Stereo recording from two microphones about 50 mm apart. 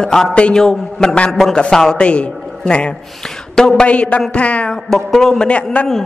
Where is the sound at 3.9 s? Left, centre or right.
Left.